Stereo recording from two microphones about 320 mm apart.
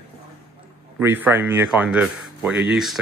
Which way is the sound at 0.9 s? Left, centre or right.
Centre.